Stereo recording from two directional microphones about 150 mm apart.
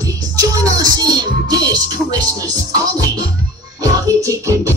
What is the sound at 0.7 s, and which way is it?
Music, 25° right (ahead or behind).